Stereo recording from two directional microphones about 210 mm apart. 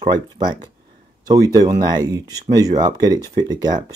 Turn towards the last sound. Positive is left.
turn(degrees=-20)  # may be behind; listen again after turning